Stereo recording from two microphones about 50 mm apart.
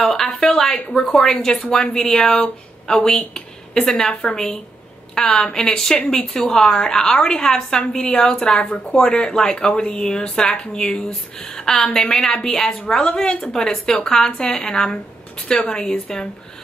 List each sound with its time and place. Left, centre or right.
0.0 s a sound: centre
0.8 s speech: left
1.1 s speech: centre